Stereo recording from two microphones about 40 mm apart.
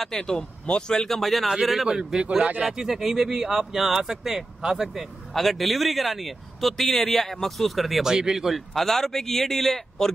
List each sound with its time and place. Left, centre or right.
0.0 s speech: centre
1.0 s speech: centre
1.9 s speech: centre
4.9 s speech: centre
8.0 s speech: centre
8.5 s speech: centre